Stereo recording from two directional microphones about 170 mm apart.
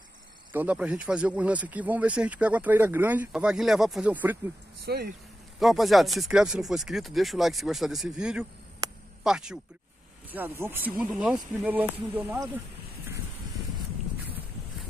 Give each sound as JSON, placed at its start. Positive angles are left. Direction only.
{"t": 0.5, "sound": "speech", "side_deg": -10}
{"t": 4.8, "sound": "speech", "side_deg": -65}
{"t": 5.6, "sound": "speech", "side_deg": 0}